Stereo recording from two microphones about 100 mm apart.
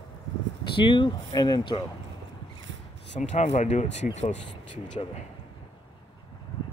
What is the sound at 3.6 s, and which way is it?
Speech, 90° left.